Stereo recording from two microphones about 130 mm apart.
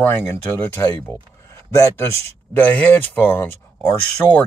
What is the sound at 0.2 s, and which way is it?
Speech, 15° left (ahead or behind).